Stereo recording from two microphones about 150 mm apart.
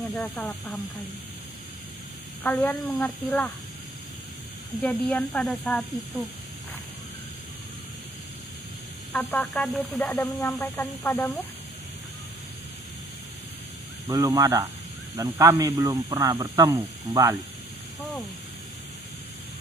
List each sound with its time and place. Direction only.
0.1 s speech: 5° left (ahead or behind)
2.4 s speech: 10° left (ahead or behind)
4.8 s speech: 5° left (ahead or behind)
9.1 s speech: 15° left (ahead or behind)
9.4 s speech: centre (ahead or behind)
14.0 s speech: 25° right (ahead or behind)